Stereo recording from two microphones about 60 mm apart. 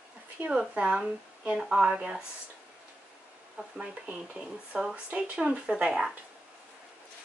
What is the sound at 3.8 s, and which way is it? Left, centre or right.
Speech, centre.